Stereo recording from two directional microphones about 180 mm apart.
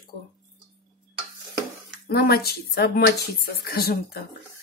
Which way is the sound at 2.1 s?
60° left (ahead or behind).